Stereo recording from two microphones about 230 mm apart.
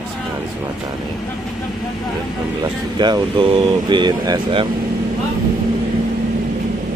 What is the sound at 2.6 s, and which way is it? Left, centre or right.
Speech, centre.